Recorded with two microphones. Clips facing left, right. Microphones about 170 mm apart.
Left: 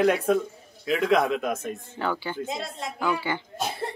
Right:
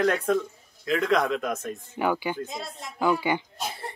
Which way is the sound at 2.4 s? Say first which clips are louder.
Left 4 dB; 85° left.